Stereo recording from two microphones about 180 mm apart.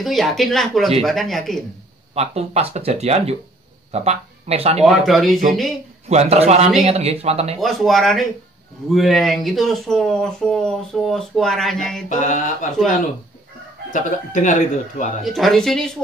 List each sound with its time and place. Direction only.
0.0 s speech: centre (ahead or behind)
2.1 s speech: 35° right (ahead or behind)
4.8 s speech: centre (ahead or behind)
6.0 s speech: 35° right (ahead or behind)
7.6 s speech: centre (ahead or behind)
12.1 s a man's voice: 45° left (ahead or behind)
13.9 s a man's voice: 45° left (ahead or behind)
15.2 s speech: centre (ahead or behind)